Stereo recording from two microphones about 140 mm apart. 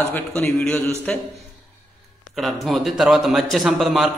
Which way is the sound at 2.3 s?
Centre (ahead or behind).